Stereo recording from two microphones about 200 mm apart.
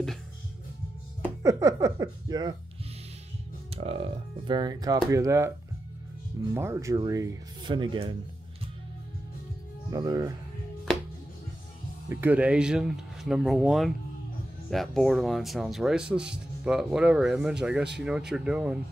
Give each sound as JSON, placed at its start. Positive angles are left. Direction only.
{"t": 1.4, "sound": "speech", "side_deg": -15}
{"t": 3.7, "sound": "speech", "side_deg": -30}
{"t": 6.5, "sound": "speech", "side_deg": -15}
{"t": 9.8, "sound": "speech", "side_deg": -20}
{"t": 10.9, "sound": "music", "side_deg": 5}
{"t": 12.1, "sound": "speech", "side_deg": -10}